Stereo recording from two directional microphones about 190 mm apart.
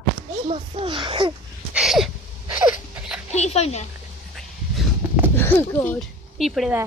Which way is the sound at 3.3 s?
35° left (ahead or behind).